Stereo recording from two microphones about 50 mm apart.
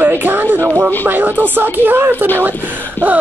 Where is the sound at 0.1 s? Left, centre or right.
Right.